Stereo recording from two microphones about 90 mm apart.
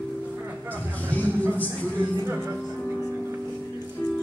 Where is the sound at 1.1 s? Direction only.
20° left (ahead or behind).